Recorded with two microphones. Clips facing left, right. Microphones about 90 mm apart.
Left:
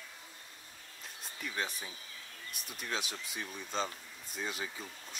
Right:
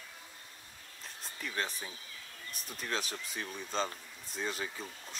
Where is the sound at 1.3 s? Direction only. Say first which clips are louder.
Right 1 dB; 45° right (ahead or behind).